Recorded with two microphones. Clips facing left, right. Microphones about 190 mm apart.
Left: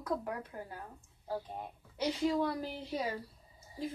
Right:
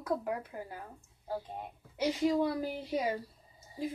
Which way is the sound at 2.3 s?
15° right (ahead or behind).